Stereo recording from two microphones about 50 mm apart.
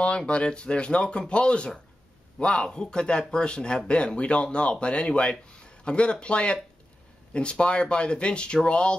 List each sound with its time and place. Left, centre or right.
0.3 s speech: left